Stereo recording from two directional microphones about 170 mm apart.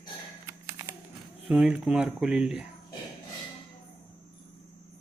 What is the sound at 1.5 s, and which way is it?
Speech, 5° right (ahead or behind).